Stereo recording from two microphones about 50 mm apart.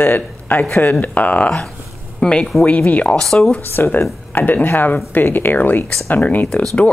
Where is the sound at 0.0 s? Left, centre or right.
Left.